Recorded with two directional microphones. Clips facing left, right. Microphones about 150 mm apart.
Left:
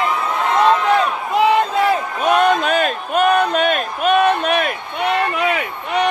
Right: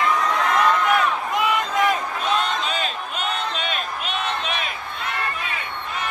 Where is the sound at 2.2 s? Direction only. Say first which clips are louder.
Left 8 dB; 55° left (ahead or behind).